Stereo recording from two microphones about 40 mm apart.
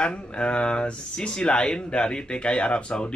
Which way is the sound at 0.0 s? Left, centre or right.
Left.